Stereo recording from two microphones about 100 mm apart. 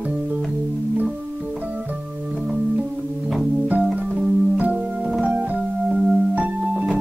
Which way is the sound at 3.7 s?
10° right (ahead or behind).